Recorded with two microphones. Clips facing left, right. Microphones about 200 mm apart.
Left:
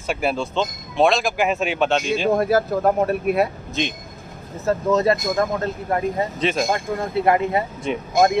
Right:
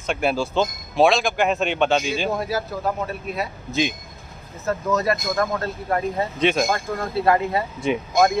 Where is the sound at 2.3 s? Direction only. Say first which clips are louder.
Left 7 dB; 55° left (ahead or behind).